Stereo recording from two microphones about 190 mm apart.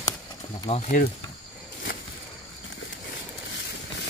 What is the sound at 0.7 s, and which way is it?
Speech, 30° left (ahead or behind).